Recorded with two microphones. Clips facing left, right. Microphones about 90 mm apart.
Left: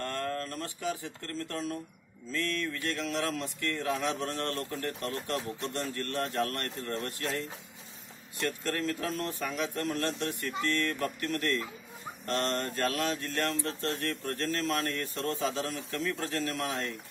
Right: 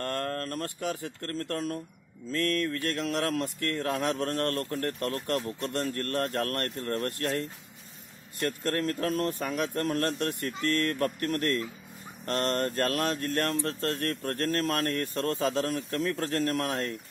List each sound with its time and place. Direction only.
0.0 s speech: 50° right (ahead or behind)
8.5 s speech: 50° right (ahead or behind)